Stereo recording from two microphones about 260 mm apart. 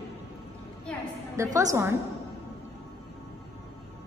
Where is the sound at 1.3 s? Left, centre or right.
Centre.